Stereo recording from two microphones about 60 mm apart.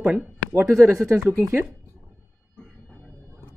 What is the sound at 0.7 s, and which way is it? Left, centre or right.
Speech, right.